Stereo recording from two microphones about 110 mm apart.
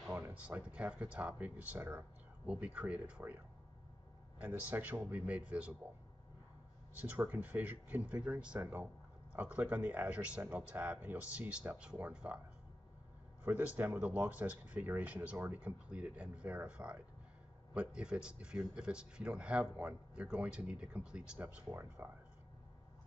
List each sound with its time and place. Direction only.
0.1 s speech: 15° right (ahead or behind)
4.4 s speech: 15° right (ahead or behind)
7.0 s speech: 15° right (ahead or behind)
13.4 s speech: 15° right (ahead or behind)
21.7 s speech: 20° right (ahead or behind)